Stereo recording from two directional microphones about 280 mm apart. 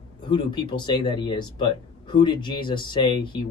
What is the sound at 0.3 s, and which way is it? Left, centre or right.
Speech, centre.